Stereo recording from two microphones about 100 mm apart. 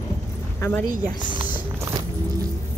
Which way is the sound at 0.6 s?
20° left (ahead or behind).